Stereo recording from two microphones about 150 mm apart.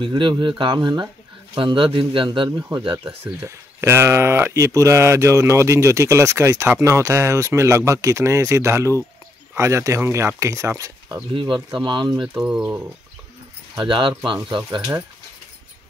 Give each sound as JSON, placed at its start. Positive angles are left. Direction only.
{"t": 0.0, "sound": "a man's voice", "side_deg": -30}
{"t": 3.3, "sound": "speech", "side_deg": -20}
{"t": 11.3, "sound": "a man's voice", "side_deg": -30}
{"t": 12.2, "sound": "speech", "side_deg": -5}
{"t": 13.7, "sound": "a man's voice", "side_deg": -35}